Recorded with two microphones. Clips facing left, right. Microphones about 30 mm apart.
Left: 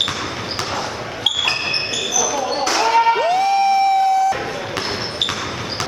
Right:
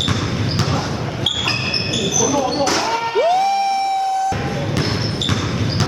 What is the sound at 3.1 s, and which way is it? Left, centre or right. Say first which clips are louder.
Music: right 1 dB; centre.